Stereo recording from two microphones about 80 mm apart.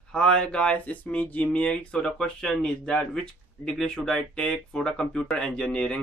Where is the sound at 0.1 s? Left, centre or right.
Centre.